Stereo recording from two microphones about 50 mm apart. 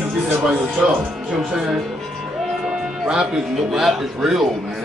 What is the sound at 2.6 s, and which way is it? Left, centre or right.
Music, centre.